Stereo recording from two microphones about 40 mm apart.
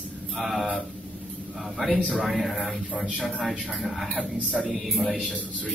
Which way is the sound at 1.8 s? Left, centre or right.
Centre.